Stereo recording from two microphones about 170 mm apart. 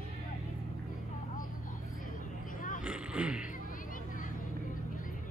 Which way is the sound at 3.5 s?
50° left (ahead or behind).